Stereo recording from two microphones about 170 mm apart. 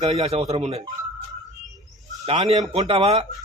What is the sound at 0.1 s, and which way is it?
Speech, 40° right (ahead or behind).